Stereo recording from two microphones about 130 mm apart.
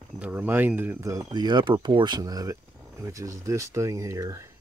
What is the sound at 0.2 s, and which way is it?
Speech, 15° right (ahead or behind).